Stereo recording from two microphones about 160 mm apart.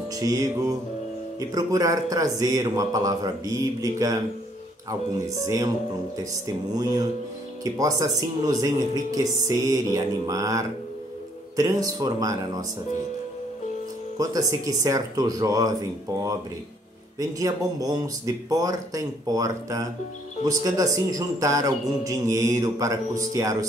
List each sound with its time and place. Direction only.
0.1 s a man's voice: 20° right (ahead or behind)
14.1 s a man's voice: 20° right (ahead or behind)
17.2 s a man's voice: 20° right (ahead or behind)